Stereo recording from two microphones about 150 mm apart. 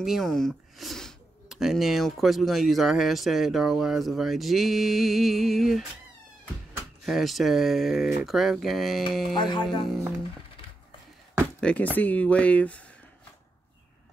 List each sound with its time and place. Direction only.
0.0 s speech: centre (ahead or behind)
7.1 s speech: centre (ahead or behind)
9.3 s speech: 30° left (ahead or behind)
11.6 s speech: 10° left (ahead or behind)